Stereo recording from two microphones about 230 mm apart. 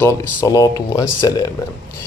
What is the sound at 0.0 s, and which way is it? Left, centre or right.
A man's voice, centre.